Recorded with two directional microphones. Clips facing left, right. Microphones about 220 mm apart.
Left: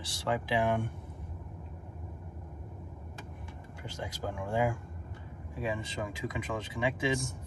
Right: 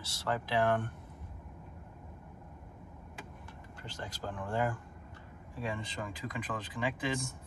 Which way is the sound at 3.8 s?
10° left (ahead or behind).